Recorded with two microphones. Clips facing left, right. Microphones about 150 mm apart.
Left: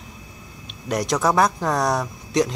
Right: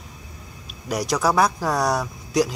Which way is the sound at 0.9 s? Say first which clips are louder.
Left 1 dB; centre (ahead or behind).